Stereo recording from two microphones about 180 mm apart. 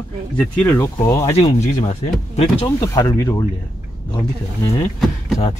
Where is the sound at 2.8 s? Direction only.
20° left (ahead or behind).